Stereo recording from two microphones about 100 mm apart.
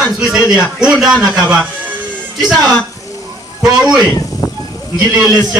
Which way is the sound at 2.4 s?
5° right (ahead or behind).